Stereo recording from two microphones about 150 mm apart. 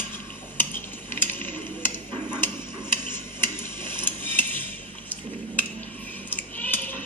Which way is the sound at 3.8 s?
30° right (ahead or behind).